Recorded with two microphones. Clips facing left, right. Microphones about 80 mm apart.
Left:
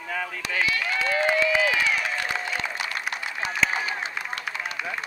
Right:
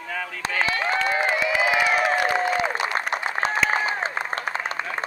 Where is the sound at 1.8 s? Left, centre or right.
Right.